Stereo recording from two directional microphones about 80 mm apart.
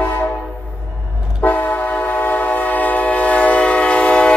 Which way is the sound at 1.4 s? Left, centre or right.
Left.